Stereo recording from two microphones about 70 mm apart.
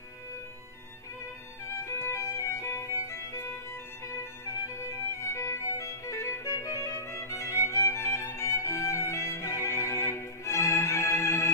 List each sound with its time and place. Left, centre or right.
1.7 s music: left